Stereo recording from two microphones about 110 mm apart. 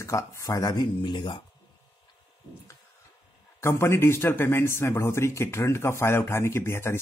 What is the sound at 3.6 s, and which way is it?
Speech, 25° left (ahead or behind).